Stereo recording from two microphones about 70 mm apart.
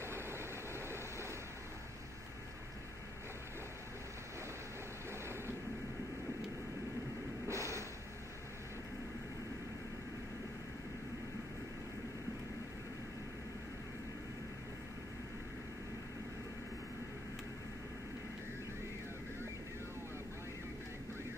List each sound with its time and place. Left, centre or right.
0.0 s vehicle: right
7.4 s music: right